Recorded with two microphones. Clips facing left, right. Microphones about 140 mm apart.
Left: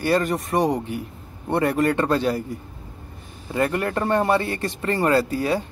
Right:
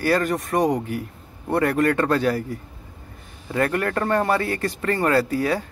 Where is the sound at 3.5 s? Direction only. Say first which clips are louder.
Even; 10° left (ahead or behind); by 5.7 s 25° left (ahead or behind).